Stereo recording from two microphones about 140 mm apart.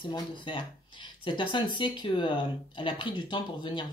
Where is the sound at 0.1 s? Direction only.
35° left (ahead or behind).